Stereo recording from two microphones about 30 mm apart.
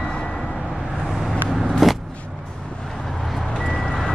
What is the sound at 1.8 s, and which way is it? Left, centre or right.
Vehicle, centre.